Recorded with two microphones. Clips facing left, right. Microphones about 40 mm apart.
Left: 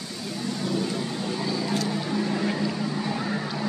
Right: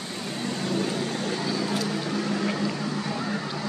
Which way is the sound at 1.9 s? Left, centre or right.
Centre.